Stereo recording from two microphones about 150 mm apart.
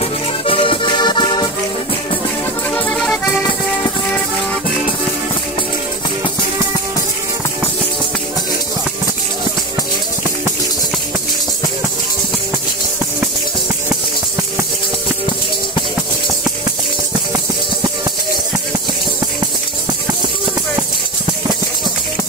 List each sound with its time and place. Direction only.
0.0 s accordion: 35° left (ahead or behind)
2.7 s music: 5° left (ahead or behind)